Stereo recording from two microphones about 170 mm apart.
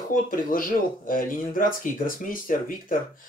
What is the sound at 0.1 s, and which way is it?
Speech, 55° left (ahead or behind).